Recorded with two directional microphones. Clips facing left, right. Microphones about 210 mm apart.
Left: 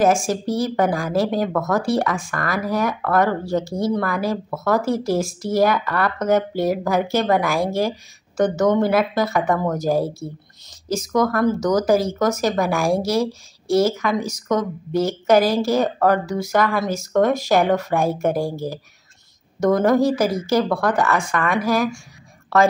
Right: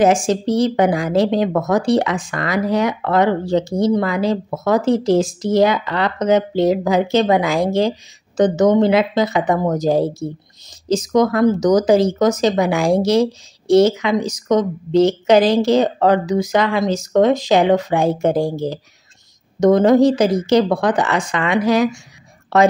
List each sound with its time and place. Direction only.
0.0 s speech: 20° right (ahead or behind)